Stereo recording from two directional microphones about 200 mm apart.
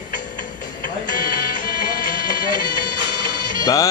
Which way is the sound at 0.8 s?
45° left (ahead or behind).